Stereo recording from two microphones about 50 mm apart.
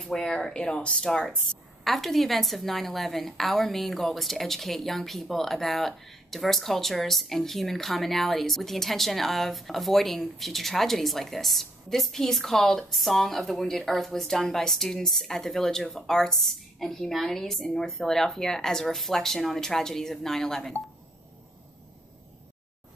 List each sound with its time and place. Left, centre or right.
0.0 s speech: centre
1.4 s a woman's voice: centre